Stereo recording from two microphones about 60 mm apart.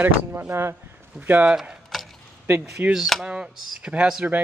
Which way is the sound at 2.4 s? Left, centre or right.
Right.